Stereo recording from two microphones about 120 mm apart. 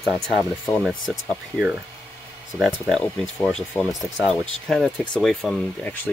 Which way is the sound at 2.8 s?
5° left (ahead or behind).